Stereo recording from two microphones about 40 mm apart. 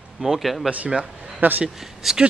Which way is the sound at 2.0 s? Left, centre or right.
Centre.